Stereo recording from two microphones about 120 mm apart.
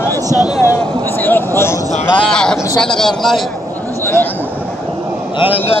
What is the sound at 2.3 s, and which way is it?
Speech, 5° left (ahead or behind).